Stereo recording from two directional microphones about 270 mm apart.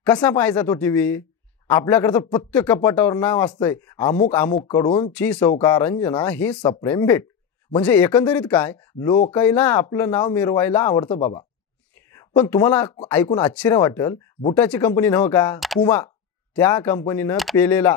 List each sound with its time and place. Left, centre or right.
0.0 s speech: centre